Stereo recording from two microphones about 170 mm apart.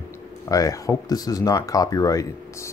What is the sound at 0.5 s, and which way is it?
Speech, 20° left (ahead or behind).